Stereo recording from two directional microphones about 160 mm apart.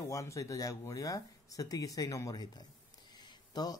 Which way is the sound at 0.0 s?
20° left (ahead or behind).